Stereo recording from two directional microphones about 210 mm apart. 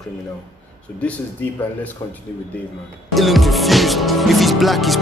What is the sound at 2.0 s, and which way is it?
Speech, 15° left (ahead or behind).